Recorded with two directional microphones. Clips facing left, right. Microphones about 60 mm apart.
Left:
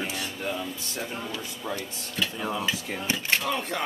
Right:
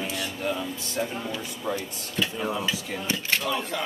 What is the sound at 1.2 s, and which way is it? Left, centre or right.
Speech, centre.